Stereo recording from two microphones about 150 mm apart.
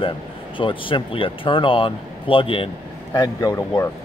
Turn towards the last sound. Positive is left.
turn(degrees=20)  # may be behind; listen again after turning